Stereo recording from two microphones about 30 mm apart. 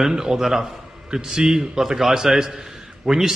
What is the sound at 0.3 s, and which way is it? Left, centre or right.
A man's voice, centre.